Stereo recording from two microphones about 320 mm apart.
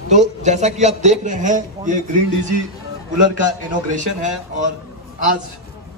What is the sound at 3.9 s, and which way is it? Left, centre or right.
Speech, right.